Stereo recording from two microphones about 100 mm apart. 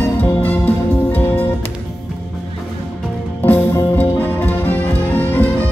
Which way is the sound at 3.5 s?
20° left (ahead or behind).